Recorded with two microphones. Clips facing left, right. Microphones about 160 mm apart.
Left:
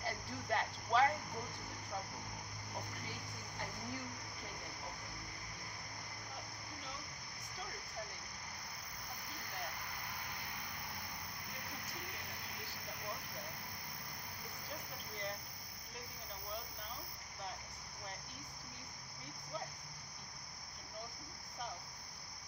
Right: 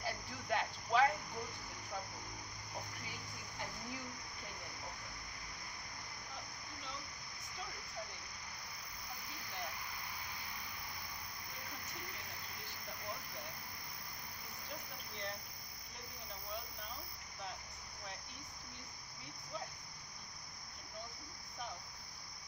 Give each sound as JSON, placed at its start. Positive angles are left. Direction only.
{"t": 0.0, "sound": "cricket", "side_deg": -5}
{"t": 9.8, "sound": "vehicle", "side_deg": 55}